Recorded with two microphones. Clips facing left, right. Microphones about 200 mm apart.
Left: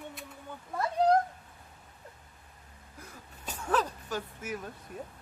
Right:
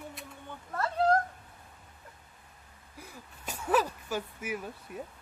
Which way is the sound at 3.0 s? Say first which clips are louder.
Right 1 dB; 10° right (ahead or behind).